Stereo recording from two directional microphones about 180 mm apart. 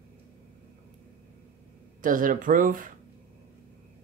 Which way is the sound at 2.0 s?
50° right (ahead or behind).